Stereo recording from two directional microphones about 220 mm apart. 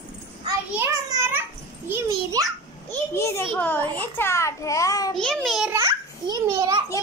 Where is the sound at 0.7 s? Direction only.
10° right (ahead or behind).